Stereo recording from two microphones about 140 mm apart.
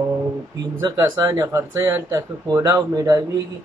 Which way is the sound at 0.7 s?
25° right (ahead or behind).